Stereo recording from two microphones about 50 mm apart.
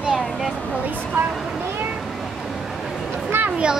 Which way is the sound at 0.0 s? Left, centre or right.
Centre.